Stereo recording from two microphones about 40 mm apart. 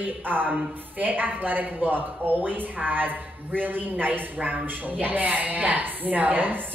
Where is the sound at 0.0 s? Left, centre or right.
Right.